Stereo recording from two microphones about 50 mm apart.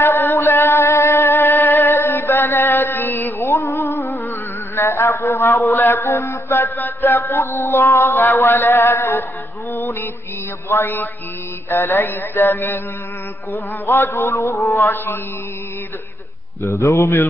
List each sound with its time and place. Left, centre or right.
0.2 s music: left
4.7 s mantra: left
9.8 s music: left
10.7 s music: left
11.7 s mantra: left
14.1 s mantra: left
16.6 s a man's voice: left